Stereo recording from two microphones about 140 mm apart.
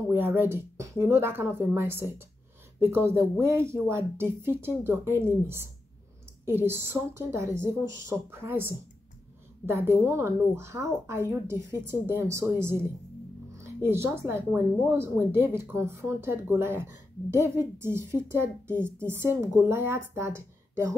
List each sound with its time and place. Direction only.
0.1 s a woman's voice: 15° right (ahead or behind)